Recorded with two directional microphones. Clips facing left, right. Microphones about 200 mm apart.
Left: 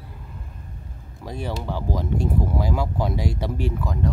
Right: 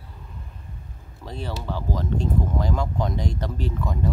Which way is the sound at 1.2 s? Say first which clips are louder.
Left 2 dB; 10° left (ahead or behind).